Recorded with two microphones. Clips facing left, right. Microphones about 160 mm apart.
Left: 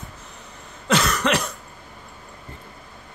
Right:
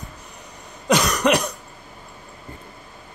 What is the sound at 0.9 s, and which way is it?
Cough, 15° right (ahead or behind).